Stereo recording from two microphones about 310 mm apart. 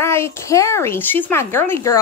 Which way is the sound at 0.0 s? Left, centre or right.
Centre.